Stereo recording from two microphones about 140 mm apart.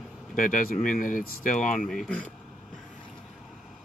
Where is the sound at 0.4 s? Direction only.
70° left (ahead or behind).